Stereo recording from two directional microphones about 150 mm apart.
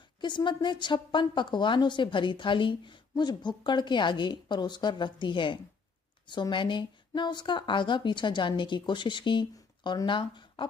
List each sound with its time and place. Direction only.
0.2 s a woman's voice: 30° left (ahead or behind)